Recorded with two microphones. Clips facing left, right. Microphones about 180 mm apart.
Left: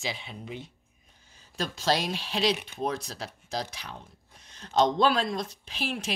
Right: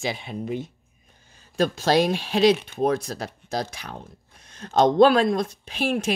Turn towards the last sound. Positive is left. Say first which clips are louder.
# right 9 dB
turn(degrees=-50)  # may be behind; listen again after turning